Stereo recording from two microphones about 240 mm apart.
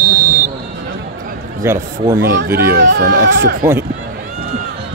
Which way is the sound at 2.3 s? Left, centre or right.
Right.